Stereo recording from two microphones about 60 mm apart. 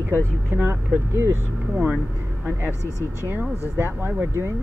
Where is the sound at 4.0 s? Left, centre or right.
Right.